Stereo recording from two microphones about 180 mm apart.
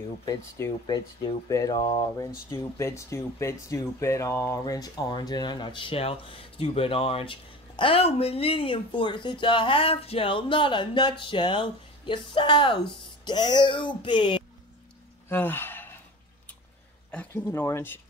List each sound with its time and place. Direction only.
0.2 s speech: 20° left (ahead or behind)
15.2 s sigh: 10° left (ahead or behind)
17.1 s speech: 10° left (ahead or behind)